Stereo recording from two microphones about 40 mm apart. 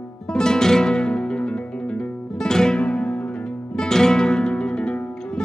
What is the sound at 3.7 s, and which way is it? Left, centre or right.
Music, centre.